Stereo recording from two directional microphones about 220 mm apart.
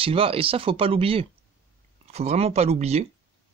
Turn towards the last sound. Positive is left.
turn(degrees=-30)  # may be behind; listen again after turning